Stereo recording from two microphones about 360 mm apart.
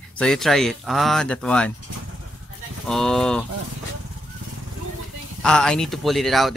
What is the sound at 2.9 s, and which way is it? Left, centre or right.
Speech, centre.